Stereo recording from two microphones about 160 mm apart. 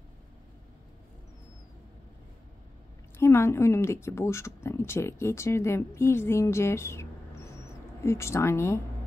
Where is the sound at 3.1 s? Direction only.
15° left (ahead or behind).